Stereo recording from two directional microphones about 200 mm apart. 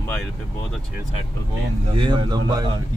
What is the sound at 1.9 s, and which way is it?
Speech, 25° right (ahead or behind).